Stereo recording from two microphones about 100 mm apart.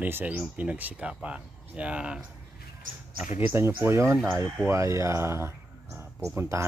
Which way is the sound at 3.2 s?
20° right (ahead or behind).